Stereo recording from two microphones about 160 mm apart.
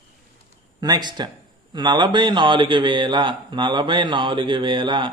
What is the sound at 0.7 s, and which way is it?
A man's voice, 25° right (ahead or behind).